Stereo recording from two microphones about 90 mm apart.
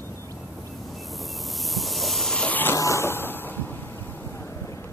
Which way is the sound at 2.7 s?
35° left (ahead or behind).